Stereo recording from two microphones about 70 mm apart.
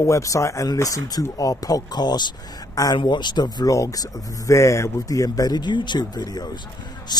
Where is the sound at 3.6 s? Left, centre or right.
Left.